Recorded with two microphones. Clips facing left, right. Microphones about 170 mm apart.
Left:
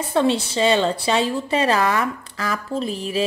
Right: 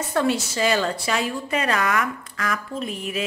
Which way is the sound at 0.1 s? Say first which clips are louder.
Left 4 dB; 25° left (ahead or behind).